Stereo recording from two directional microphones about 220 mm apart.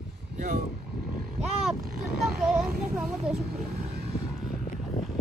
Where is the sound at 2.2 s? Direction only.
5° right (ahead or behind).